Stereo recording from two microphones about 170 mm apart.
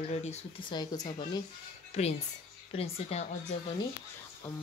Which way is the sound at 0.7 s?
25° left (ahead or behind).